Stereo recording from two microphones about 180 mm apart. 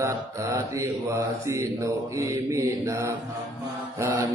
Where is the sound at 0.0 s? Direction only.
15° right (ahead or behind).